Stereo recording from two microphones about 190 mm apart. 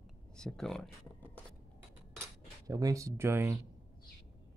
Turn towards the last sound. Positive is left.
turn(degrees=-15)  # may be behind; listen again after turning